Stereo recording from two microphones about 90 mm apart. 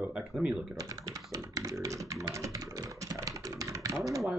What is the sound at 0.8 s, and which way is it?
Tap, 40° right (ahead or behind).